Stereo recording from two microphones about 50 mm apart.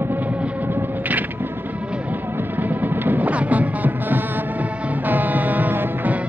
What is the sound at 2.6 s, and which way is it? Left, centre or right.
Music, right.